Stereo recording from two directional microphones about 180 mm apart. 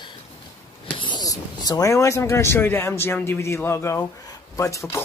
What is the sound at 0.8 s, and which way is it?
Speech, 25° left (ahead or behind).